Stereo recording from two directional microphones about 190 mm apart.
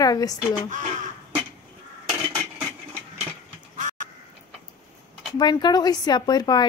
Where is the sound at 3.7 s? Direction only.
40° right (ahead or behind).